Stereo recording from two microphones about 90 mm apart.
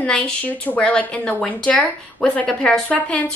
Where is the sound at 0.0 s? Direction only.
15° left (ahead or behind).